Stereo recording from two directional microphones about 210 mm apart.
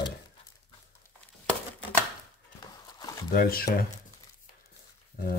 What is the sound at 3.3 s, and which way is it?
Speech, 45° left (ahead or behind).